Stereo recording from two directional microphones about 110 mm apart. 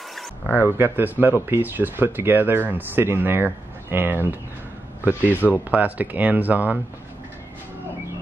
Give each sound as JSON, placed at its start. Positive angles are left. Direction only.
{"t": 0.7, "sound": "speech", "side_deg": -20}